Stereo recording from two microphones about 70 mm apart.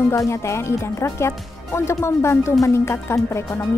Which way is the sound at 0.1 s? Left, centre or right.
Left.